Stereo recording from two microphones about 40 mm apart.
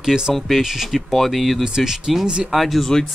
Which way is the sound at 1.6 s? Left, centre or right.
Centre.